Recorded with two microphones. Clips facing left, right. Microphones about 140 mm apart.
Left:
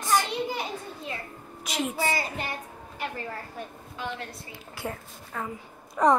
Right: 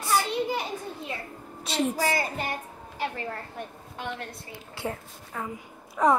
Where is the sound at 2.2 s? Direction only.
45° right (ahead or behind).